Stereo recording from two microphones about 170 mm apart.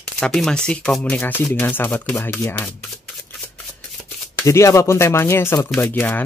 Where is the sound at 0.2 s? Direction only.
5° left (ahead or behind).